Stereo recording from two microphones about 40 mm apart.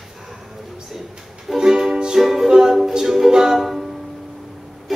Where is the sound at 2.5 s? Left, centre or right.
Centre.